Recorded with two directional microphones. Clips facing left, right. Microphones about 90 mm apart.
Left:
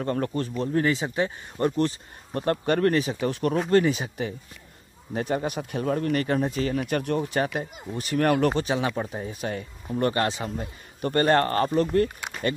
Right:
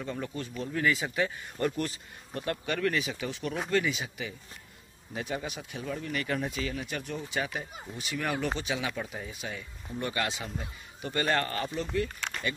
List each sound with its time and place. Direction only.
0.0 s speech: 60° left (ahead or behind)
0.6 s speech: 35° left (ahead or behind)
2.3 s speech: 45° left (ahead or behind)
6.2 s speech: 40° left (ahead or behind); by 8.5 s 60° left (ahead or behind)
8.5 s speech: 40° left (ahead or behind)
12.2 s a sound: 10° left (ahead or behind)